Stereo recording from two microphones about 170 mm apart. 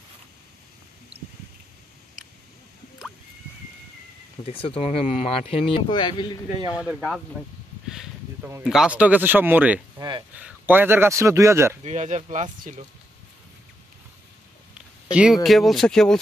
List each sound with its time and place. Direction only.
4.5 s speech: 35° left (ahead or behind)
6.7 s speech: 5° right (ahead or behind)
8.6 s speech: 5° right (ahead or behind)
9.9 s speech: 25° right (ahead or behind)
10.3 s speech: 10° right (ahead or behind)
11.8 s speech: 45° right (ahead or behind)
15.0 s speech: 5° right (ahead or behind)